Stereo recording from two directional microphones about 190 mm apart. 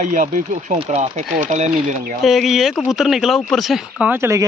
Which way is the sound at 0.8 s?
30° right (ahead or behind).